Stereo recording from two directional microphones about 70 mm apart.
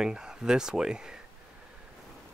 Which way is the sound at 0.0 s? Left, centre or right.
Centre.